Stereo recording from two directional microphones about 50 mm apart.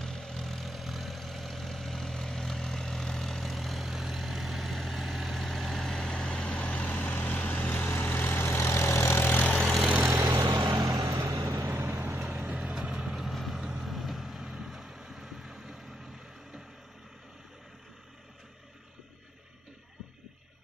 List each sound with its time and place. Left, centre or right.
0.0 s vehicle: centre; by 9.4 s left
10.0 s vehicle: right
11.5 s vehicle: right
12.2 s vehicle: centre
12.4 s vehicle: right
12.7 s vehicle: centre
13.1 s vehicle: centre